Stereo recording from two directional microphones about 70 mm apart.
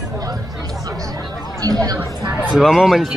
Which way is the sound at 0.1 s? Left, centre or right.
Right.